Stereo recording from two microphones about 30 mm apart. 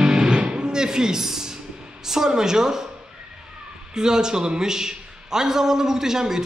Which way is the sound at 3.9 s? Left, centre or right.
Right.